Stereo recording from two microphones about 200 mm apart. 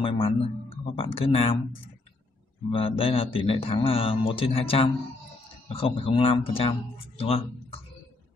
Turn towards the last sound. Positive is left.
turn(degrees=30)  # may be behind; listen again after turning